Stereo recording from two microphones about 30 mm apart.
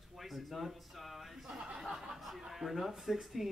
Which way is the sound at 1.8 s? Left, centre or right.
Centre.